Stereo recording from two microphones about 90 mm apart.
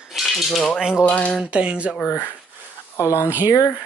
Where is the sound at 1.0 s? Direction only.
15° left (ahead or behind).